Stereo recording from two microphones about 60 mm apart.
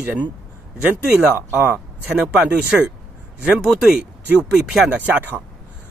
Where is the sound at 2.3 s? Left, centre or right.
Centre.